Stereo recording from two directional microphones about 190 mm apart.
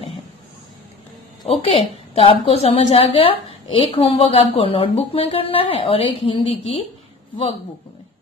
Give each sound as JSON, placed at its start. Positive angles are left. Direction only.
{"t": 1.5, "sound": "speech", "side_deg": 30}